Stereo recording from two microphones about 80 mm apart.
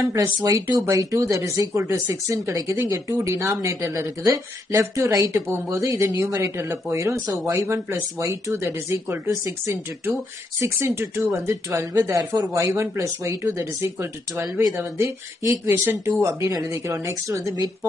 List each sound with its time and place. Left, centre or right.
0.4 s speech: right
12.2 s speech: right
12.5 s speech: right